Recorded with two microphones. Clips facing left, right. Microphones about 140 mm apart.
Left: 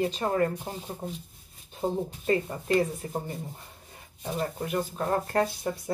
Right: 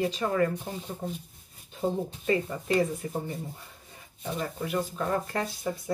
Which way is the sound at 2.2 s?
35° left (ahead or behind).